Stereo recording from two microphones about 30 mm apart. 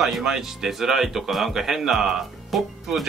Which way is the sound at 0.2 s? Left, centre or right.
Centre.